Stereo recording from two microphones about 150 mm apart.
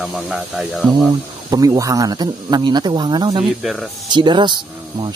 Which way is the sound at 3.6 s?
Centre (ahead or behind).